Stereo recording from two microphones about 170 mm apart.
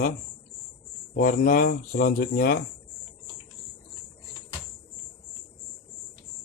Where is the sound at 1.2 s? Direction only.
55° left (ahead or behind).